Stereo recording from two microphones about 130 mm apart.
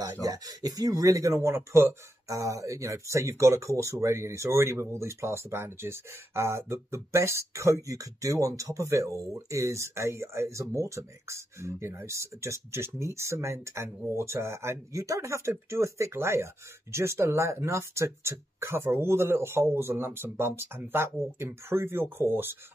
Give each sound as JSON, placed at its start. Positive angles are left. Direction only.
{"t": 0.0, "sound": "speech", "side_deg": -30}